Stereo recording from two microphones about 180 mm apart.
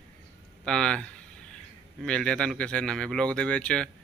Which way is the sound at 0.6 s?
5° left (ahead or behind).